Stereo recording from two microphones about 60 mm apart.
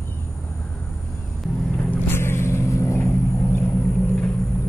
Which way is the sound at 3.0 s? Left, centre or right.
Left.